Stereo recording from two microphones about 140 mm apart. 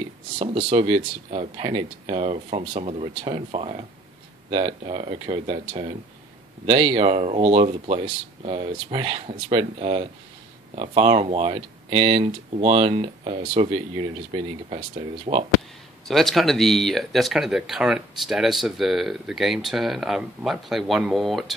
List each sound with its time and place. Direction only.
0.4 s speech: 40° right (ahead or behind)
16.1 s speech: centre (ahead or behind)